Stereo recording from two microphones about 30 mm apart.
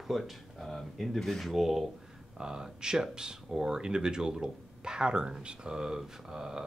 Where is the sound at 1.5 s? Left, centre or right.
Centre.